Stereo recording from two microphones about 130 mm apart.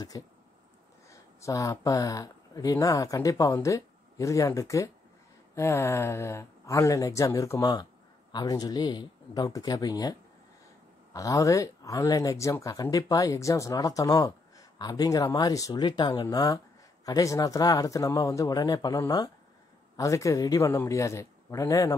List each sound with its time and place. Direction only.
0.1 s speech: 30° left (ahead or behind)
1.4 s speech: 25° left (ahead or behind)
11.1 s speech: 25° left (ahead or behind)